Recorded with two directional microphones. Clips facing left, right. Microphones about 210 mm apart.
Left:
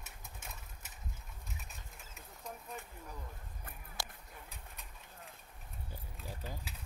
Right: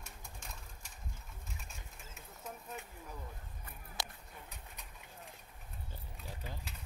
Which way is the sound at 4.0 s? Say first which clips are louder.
Right 1 dB; 20° right (ahead or behind).